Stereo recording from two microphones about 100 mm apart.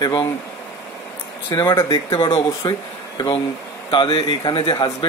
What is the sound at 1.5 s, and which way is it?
Speech, 35° left (ahead or behind).